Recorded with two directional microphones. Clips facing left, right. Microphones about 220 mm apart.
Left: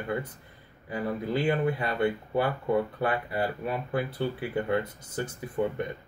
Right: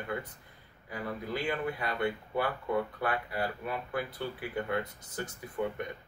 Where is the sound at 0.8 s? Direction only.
30° left (ahead or behind).